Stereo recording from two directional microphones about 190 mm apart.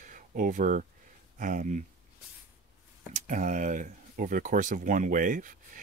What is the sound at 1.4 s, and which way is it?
Speech, 45° right (ahead or behind).